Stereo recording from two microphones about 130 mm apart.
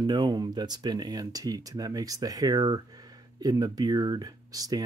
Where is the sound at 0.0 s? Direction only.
35° right (ahead or behind).